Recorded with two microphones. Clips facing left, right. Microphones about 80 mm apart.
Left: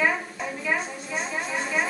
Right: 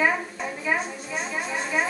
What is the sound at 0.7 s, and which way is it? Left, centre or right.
Speech, centre.